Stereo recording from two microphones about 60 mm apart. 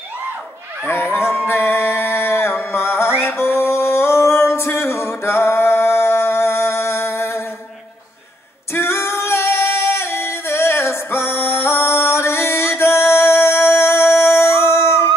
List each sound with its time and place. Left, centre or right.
0.8 s a sound: left
1.5 s music: left
8.7 s singing: left